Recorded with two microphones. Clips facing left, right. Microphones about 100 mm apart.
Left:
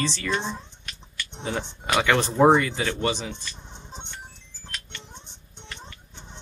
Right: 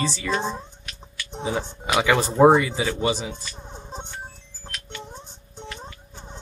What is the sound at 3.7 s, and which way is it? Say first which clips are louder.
Music: right 5 dB; 40° right (ahead or behind).